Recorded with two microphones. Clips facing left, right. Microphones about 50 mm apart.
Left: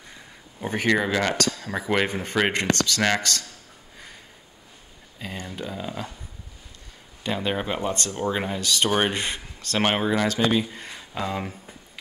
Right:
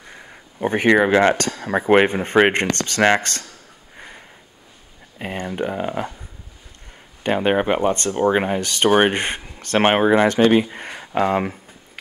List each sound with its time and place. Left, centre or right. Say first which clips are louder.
0.0 s speech: right 4 dB; right
3.9 s a sound: right 6 dB; right
5.2 s speech: right 9 dB; right
7.2 s speech: right 8 dB; right